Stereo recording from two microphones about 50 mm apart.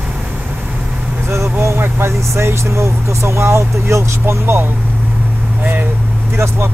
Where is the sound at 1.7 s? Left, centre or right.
Right.